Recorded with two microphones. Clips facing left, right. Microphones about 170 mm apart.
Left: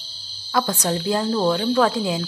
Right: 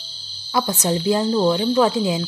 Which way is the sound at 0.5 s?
5° right (ahead or behind).